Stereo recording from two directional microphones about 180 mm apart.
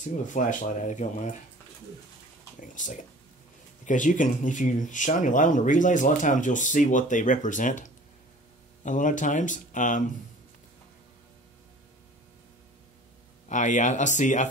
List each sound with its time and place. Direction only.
0.0 s speech: 45° left (ahead or behind)
2.6 s speech: 45° left (ahead or behind)
13.5 s speech: 45° left (ahead or behind)